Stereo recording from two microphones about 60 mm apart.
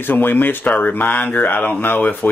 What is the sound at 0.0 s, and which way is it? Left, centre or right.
Speech, left.